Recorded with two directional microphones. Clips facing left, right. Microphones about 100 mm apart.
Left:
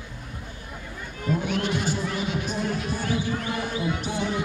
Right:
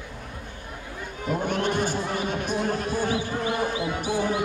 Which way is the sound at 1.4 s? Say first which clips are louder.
Right 1 dB; 50° right (ahead or behind).